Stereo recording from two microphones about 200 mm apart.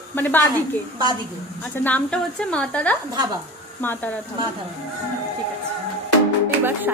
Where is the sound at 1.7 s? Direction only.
10° left (ahead or behind).